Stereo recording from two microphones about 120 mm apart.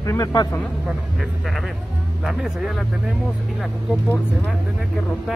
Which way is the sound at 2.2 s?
5° right (ahead or behind).